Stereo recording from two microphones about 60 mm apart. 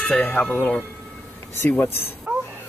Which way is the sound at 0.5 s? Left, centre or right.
Left.